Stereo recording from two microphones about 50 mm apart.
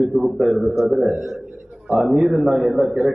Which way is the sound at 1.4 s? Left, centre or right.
Right.